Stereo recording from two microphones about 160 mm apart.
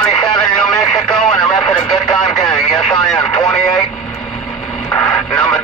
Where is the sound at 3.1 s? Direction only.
25° left (ahead or behind).